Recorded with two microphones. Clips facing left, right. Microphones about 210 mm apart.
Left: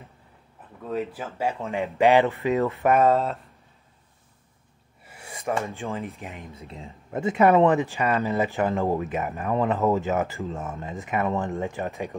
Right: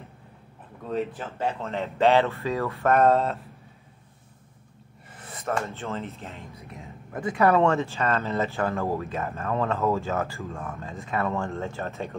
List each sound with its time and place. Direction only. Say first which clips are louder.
0.8 s speech: even; 5° left (ahead or behind)
3.0 s speech: right 2 dB; centre (ahead or behind)
5.0 s speech: left 2 dB; 10° left (ahead or behind)
6.5 s speech: left 2 dB; 25° left (ahead or behind)